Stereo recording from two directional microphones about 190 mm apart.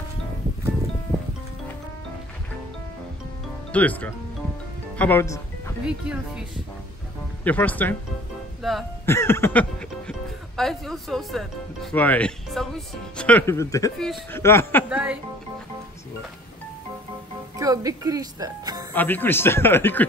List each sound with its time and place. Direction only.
3.7 s speech: 5° left (ahead or behind)
5.9 s speech: 5° right (ahead or behind)
7.4 s speech: 10° left (ahead or behind)
9.0 s speech: 15° left (ahead or behind)
13.9 s speech: centre (ahead or behind)
14.4 s speech: 15° left (ahead or behind)
14.9 s speech: 5° right (ahead or behind)
17.6 s speech: 20° right (ahead or behind)
18.9 s speech: 10° left (ahead or behind)